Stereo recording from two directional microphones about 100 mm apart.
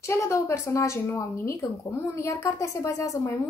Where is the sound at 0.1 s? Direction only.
30° left (ahead or behind).